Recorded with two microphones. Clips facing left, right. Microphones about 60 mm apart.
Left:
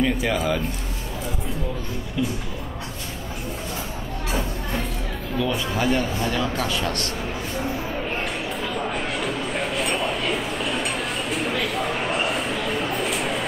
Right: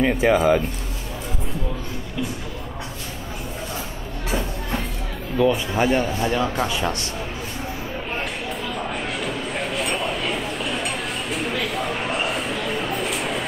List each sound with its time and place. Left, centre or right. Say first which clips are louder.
0.0 s speech: right 5 dB; right
5.4 s a man's voice: right 5 dB; right
8.2 s a sound: left 1 dB; centre